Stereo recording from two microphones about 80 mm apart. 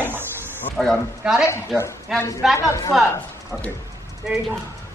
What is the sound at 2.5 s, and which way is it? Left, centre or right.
Speech, left.